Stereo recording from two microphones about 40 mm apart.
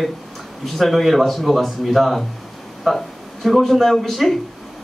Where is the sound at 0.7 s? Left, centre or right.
Centre.